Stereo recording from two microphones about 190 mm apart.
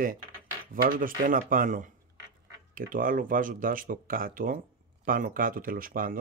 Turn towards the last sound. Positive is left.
turn(degrees=-50)  # may be behind; listen again after turning